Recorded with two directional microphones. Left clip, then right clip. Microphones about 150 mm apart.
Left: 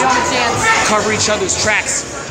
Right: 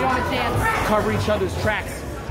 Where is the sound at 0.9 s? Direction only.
20° right (ahead or behind).